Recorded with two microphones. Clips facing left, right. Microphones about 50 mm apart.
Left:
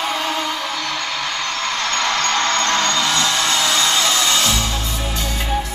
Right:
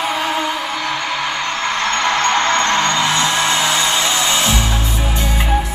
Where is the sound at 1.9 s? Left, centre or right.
Centre.